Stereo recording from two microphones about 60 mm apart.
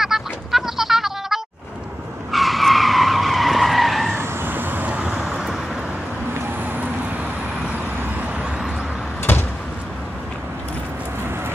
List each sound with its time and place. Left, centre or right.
0.0 s bird: centre
2.3 s skidding: centre
4.2 s vehicle: right
9.3 s a sound: left